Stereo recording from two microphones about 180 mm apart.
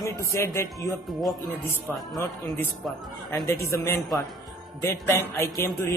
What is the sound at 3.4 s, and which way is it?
A man's voice, 15° left (ahead or behind).